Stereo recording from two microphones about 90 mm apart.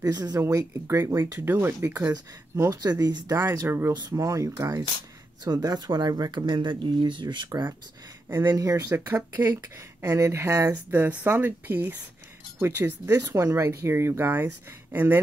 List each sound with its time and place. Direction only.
0.0 s speech: 45° right (ahead or behind)
0.4 s speech: 30° right (ahead or behind)
2.6 s speech: 40° right (ahead or behind)
5.4 s speech: 50° right (ahead or behind)
6.4 s speech: 60° right (ahead or behind)
8.5 s speech: 40° right (ahead or behind)
8.8 s speech: 30° right (ahead or behind)
10.7 s speech: 20° right (ahead or behind)